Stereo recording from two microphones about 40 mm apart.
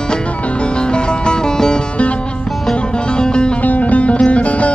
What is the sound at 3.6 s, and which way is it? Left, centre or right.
Music, left.